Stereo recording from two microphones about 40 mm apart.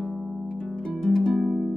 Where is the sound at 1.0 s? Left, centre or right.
Centre.